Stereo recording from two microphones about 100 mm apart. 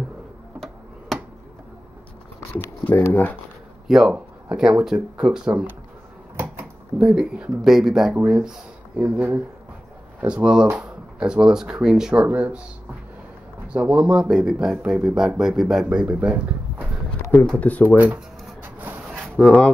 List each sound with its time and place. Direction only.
0.6 s tick-tock: 5° left (ahead or behind)
3.1 s speech: 20° left (ahead or behind)
3.8 s speech: 5° right (ahead or behind)
6.3 s a sound: 20° right (ahead or behind)
7.0 s speech: 5° right (ahead or behind)
13.7 s speech: 10° right (ahead or behind)
17.6 s speech: 15° left (ahead or behind)
17.8 s a sound: 15° right (ahead or behind)
19.3 s speech: 10° left (ahead or behind)